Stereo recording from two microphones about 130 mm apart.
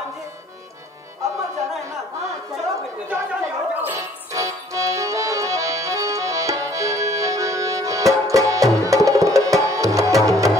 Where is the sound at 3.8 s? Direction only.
25° right (ahead or behind).